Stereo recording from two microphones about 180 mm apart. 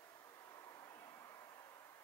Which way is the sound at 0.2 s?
15° left (ahead or behind).